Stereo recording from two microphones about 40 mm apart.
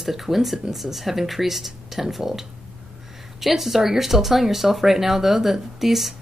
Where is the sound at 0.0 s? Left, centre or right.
Centre.